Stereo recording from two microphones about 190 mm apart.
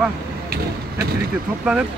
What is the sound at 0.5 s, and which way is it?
Speech, 55° right (ahead or behind).